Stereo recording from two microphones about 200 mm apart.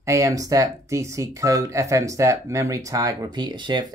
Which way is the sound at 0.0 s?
15° right (ahead or behind).